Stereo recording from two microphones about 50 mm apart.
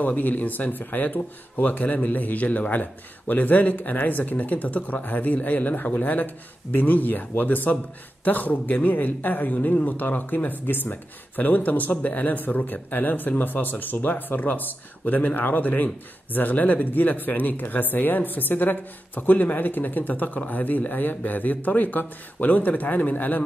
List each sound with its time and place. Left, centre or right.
0.0 s speech: left